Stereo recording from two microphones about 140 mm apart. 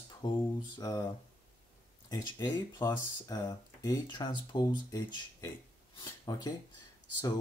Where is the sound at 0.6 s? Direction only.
30° left (ahead or behind).